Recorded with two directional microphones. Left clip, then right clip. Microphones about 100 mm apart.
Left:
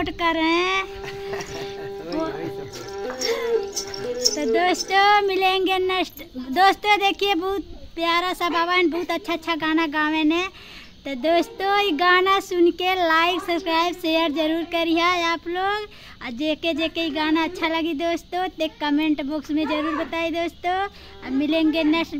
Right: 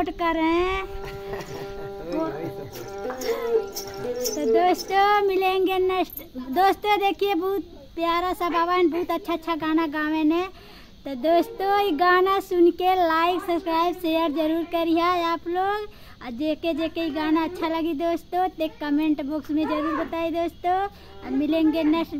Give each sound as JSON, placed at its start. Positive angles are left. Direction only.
{"t": 0.0, "sound": "speech", "side_deg": 20}
{"t": 1.8, "sound": "music", "side_deg": 5}
{"t": 3.2, "sound": "music", "side_deg": 20}
{"t": 3.4, "sound": "music", "side_deg": -5}
{"t": 4.4, "sound": "speech", "side_deg": 15}